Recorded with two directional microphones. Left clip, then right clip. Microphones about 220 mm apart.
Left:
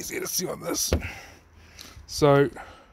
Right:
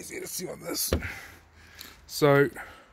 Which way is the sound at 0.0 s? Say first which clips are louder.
Left 7 dB; 20° left (ahead or behind).